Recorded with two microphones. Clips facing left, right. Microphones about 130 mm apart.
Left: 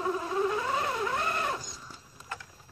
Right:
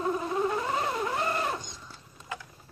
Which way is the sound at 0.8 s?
20° right (ahead or behind).